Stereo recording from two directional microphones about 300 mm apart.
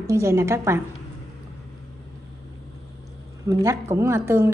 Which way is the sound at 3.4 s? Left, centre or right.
Centre.